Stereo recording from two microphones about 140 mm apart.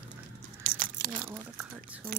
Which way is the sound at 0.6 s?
85° right.